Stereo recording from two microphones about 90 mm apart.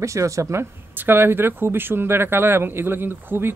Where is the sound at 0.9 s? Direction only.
25° right (ahead or behind).